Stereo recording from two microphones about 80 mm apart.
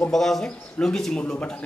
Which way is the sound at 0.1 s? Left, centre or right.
Centre.